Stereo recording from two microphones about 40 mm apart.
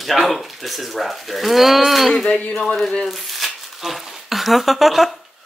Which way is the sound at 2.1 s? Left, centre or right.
Centre.